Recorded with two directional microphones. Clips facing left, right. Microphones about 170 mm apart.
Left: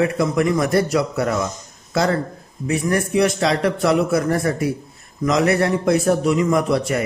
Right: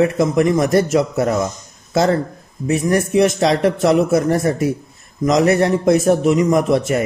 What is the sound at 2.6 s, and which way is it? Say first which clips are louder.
A man's voice: right 3 dB; 25° right (ahead or behind).